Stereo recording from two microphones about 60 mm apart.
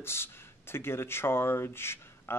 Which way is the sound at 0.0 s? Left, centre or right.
Left.